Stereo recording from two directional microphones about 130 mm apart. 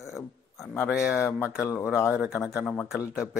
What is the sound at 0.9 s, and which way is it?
Speech, 5° right (ahead or behind).